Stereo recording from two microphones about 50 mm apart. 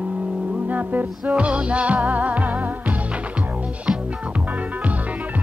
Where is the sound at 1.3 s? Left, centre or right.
Right.